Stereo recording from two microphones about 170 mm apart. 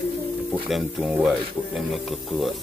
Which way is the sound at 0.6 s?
5° right (ahead or behind).